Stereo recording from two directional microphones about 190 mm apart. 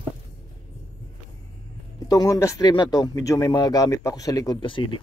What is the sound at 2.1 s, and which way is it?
Speech, 20° left (ahead or behind).